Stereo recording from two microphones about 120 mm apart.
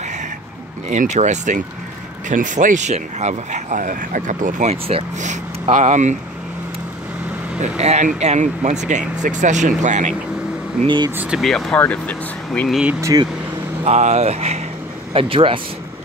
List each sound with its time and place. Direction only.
0.8 s speech: 90° right
7.6 s speech: 65° right (ahead or behind); by 10.1 s 85° right
11.1 s speech: 15° right (ahead or behind)
11.3 s speech: centre (ahead or behind)
12.6 s speech: 5° right (ahead or behind)
13.0 s speech: 30° right (ahead or behind)
13.8 s speech: 70° right (ahead or behind)
15.1 s speech: 50° right (ahead or behind)